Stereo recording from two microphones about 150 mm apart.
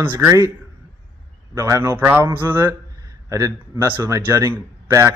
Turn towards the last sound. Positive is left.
turn(degrees=-20)  # may be behind; listen again after turning